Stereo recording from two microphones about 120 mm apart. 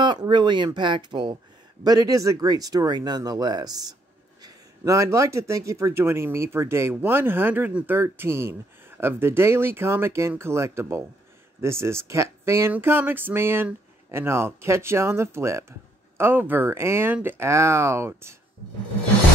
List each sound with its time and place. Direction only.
0.2 s speech: 40° right (ahead or behind); by 18.3 s 20° right (ahead or behind)